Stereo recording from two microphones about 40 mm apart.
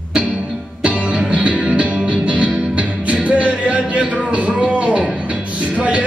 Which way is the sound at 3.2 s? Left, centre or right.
Right.